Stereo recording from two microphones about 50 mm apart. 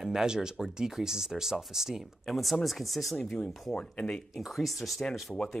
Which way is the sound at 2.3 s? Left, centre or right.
Centre.